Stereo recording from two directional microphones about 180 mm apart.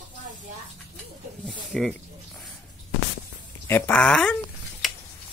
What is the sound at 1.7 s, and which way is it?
Speech, 5° left (ahead or behind).